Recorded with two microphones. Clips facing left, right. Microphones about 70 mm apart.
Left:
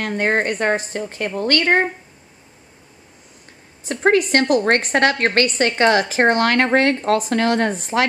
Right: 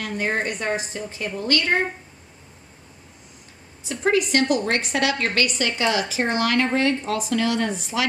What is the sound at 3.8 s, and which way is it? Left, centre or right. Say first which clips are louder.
A woman's voice: left 5 dB; left.